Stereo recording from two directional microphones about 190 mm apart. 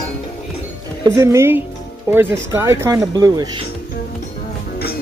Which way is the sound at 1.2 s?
15° right (ahead or behind).